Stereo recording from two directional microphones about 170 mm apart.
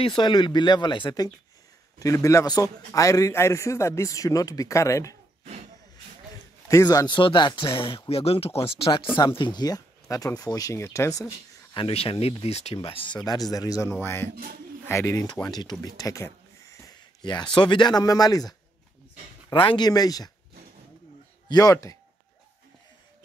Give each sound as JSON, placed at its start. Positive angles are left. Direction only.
{"t": 0.0, "sound": "a man's voice", "side_deg": 30}
{"t": 6.7, "sound": "a man's voice", "side_deg": 20}
{"t": 11.7, "sound": "a man's voice", "side_deg": 35}
{"t": 19.5, "sound": "a man's voice", "side_deg": 30}
{"t": 21.5, "sound": "a man's voice", "side_deg": 20}